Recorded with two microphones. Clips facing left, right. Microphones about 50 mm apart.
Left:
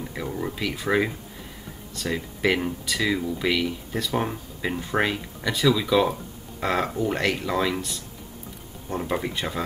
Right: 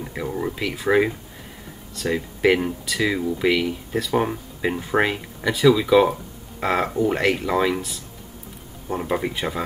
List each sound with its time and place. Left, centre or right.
0.0 s speech: centre